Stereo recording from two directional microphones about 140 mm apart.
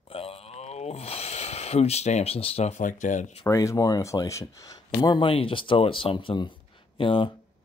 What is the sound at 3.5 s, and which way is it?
Speech, 25° left (ahead or behind).